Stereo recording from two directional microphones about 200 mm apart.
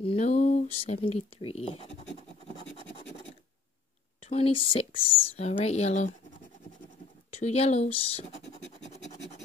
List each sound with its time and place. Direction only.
0.0 s speech: 30° left (ahead or behind)
4.2 s a woman's voice: 30° left (ahead or behind)
7.3 s speech: 30° left (ahead or behind)